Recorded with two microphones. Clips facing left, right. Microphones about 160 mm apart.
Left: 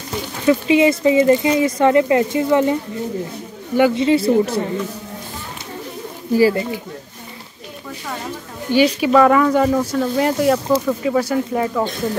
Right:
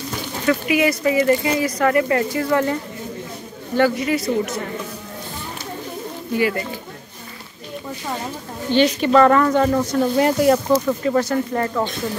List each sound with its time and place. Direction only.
0.5 s speech: 25° left (ahead or behind)
3.9 s speech: 25° left (ahead or behind)
6.3 s speech: 35° left (ahead or behind)
8.6 s speech: 10° left (ahead or behind)